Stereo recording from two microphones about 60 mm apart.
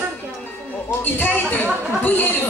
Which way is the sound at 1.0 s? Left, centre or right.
Left.